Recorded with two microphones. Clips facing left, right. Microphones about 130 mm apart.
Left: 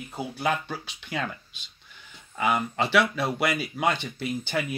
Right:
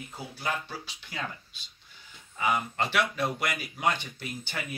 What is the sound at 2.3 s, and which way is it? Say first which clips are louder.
Speech: left 3 dB; 85° left.